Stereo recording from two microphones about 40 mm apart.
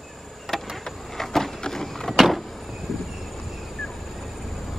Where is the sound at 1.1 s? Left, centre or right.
Centre.